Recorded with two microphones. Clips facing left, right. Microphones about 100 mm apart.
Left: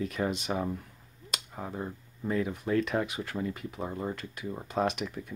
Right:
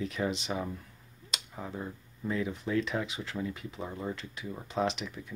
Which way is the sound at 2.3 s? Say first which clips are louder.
Left 2 dB; 45° left (ahead or behind).